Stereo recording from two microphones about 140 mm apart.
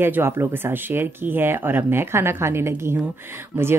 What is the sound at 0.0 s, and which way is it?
Speech, 15° right (ahead or behind).